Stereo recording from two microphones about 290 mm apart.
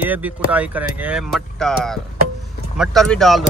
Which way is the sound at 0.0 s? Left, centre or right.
Centre.